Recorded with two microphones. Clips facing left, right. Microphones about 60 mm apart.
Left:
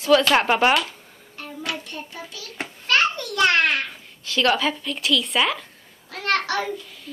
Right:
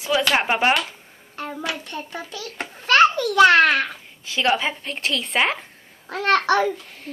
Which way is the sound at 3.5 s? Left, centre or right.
Right.